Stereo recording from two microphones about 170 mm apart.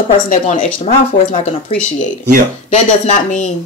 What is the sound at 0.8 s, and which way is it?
Speech, 40° left (ahead or behind).